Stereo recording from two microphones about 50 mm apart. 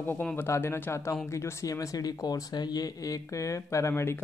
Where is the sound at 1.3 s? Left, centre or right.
Left.